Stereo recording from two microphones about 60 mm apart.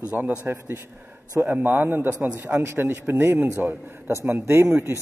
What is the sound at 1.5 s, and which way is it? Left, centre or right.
A man's voice, right.